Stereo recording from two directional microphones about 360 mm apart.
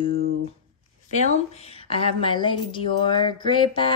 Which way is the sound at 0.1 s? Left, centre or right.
Right.